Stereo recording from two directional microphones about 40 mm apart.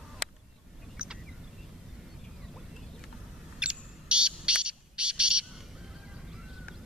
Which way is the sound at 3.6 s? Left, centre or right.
Right.